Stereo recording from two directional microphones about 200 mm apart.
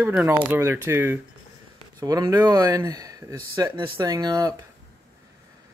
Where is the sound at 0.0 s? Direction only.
5° right (ahead or behind).